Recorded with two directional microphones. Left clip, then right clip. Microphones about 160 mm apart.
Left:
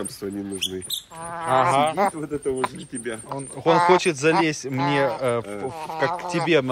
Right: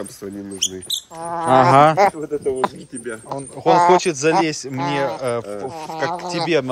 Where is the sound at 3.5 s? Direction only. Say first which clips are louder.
Right 4 dB; 20° right (ahead or behind).